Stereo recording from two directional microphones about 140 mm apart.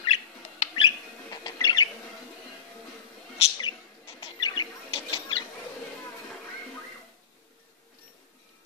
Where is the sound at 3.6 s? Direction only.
45° left (ahead or behind).